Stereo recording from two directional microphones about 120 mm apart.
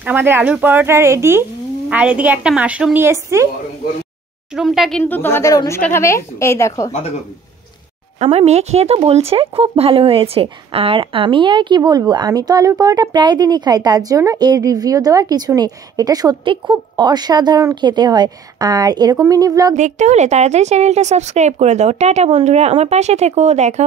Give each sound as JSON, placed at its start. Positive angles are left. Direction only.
{"t": 0.0, "sound": "a woman's voice", "side_deg": -15}
{"t": 1.9, "sound": "a woman's voice", "side_deg": -10}
{"t": 4.6, "sound": "speech", "side_deg": 0}
{"t": 5.0, "sound": "a woman's voice", "side_deg": 15}
{"t": 8.2, "sound": "speech", "side_deg": -55}
{"t": 19.7, "sound": "a woman's voice", "side_deg": -85}